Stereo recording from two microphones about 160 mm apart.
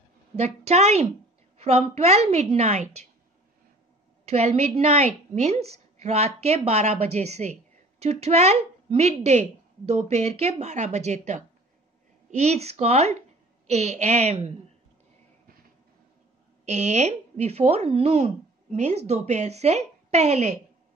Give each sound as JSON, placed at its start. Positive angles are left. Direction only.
{"t": 0.4, "sound": "speech", "side_deg": -45}
{"t": 4.3, "sound": "speech", "side_deg": -40}
{"t": 16.6, "sound": "speech", "side_deg": -45}